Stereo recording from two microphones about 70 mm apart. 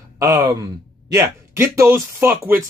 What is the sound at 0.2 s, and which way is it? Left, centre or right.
Speech, right.